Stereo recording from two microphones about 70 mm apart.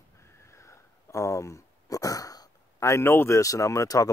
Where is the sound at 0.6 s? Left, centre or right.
Left.